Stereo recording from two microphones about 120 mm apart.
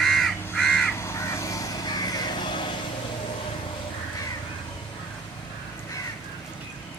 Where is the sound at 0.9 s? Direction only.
25° left (ahead or behind); by 2.7 s 40° left (ahead or behind).